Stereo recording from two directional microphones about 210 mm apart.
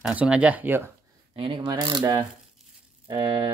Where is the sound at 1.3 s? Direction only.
25° right (ahead or behind).